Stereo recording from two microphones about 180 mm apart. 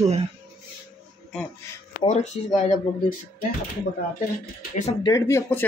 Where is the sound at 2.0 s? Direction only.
40° left (ahead or behind).